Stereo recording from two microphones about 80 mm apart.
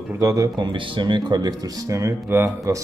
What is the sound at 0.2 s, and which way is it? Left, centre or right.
Speech, right.